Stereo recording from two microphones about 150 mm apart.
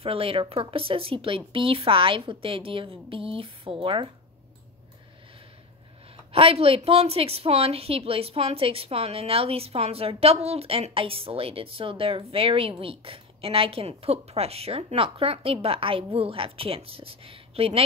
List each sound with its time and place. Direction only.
0.0 s a woman's voice: 40° right (ahead or behind)
6.3 s a woman's voice: 40° right (ahead or behind)